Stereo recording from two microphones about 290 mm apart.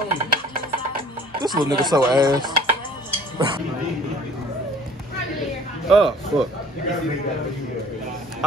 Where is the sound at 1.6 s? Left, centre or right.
Centre.